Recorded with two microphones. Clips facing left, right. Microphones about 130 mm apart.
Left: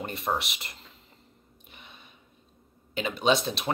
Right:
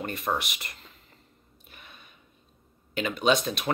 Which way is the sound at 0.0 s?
25° left (ahead or behind).